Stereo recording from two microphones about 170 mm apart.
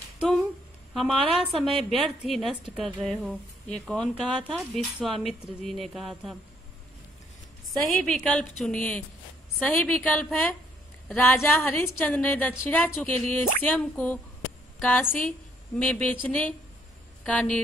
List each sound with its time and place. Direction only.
0.9 s speech: centre (ahead or behind)
7.6 s a woman's voice: 5° left (ahead or behind)